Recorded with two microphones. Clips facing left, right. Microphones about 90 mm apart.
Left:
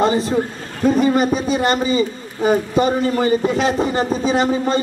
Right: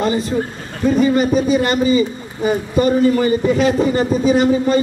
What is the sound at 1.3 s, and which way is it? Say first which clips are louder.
A man's voice: right 2 dB; 35° left (ahead or behind).